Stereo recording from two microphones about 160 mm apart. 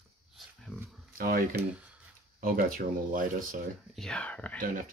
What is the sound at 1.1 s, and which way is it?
Speech, 60° right (ahead or behind).